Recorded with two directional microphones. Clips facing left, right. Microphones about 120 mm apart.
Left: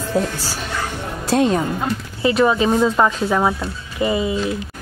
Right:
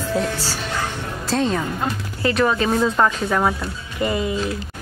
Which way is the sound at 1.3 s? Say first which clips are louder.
Left 4 dB; 15° left (ahead or behind).